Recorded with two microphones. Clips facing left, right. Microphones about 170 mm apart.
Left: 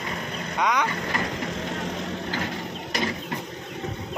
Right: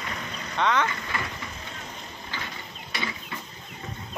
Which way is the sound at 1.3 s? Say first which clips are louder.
Left 9 dB; 85° left.